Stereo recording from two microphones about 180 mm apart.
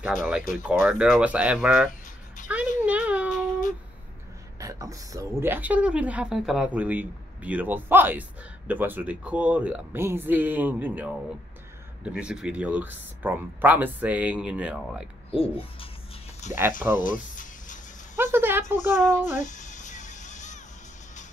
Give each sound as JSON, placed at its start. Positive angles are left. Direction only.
{"t": 0.0, "sound": "speech", "side_deg": -5}
{"t": 2.8, "sound": "a sound", "side_deg": -10}
{"t": 4.6, "sound": "speech", "side_deg": -20}
{"t": 15.3, "sound": "speech", "side_deg": 30}
{"t": 17.0, "sound": "a sound", "side_deg": 45}
{"t": 18.1, "sound": "speech", "side_deg": -10}
{"t": 19.4, "sound": "music", "side_deg": 40}